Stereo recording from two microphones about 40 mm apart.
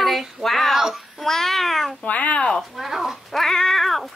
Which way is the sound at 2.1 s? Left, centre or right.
Left.